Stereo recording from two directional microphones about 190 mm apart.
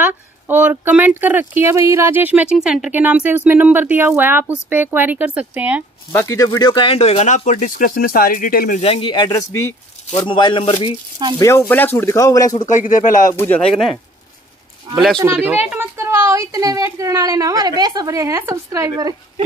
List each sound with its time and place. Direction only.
0.0 s speech: 10° right (ahead or behind)
6.1 s speech: 15° left (ahead or behind)
10.1 s a man's voice: 25° left (ahead or behind)
11.3 s speech: 15° left (ahead or behind)
12.6 s speech: 40° left (ahead or behind)
13.3 s speech: 10° left (ahead or behind)
15.3 s speech: 10° right (ahead or behind)